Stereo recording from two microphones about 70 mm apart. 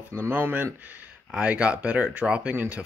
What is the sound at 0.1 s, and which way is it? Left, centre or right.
Speech, right.